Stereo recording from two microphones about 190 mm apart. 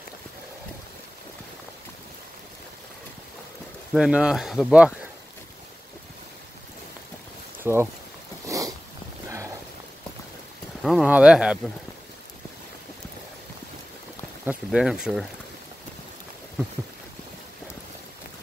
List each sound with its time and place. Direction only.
3.9 s speech: 5° right (ahead or behind)
7.6 s speech: 10° right (ahead or behind)
8.5 s a sound: 15° right (ahead or behind)
10.8 s speech: centre (ahead or behind)
14.4 s speech: 5° right (ahead or behind)